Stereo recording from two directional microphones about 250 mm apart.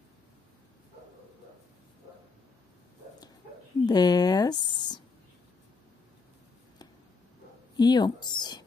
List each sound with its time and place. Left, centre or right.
3.8 s a woman's voice: centre
7.7 s speech: centre